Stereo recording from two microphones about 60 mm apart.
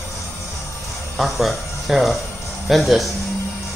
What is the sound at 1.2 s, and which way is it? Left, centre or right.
A man's voice, centre.